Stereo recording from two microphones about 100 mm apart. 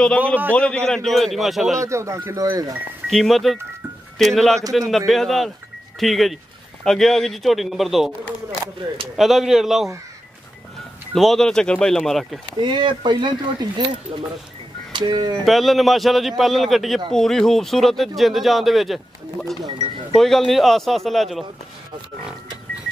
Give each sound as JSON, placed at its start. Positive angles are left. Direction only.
{"t": 0.5, "sound": "a man's voice", "side_deg": 10}
{"t": 1.9, "sound": "speech", "side_deg": -30}
{"t": 3.1, "sound": "a man's voice", "side_deg": 0}
{"t": 9.1, "sound": "a man's voice", "side_deg": 0}
{"t": 11.1, "sound": "a man's voice", "side_deg": 0}
{"t": 12.5, "sound": "speech", "side_deg": -50}
{"t": 14.9, "sound": "speech", "side_deg": -50}
{"t": 15.4, "sound": "a man's voice", "side_deg": 0}
{"t": 20.2, "sound": "a man's voice", "side_deg": 5}